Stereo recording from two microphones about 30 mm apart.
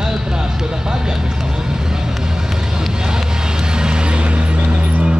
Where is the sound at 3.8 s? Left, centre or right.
Right.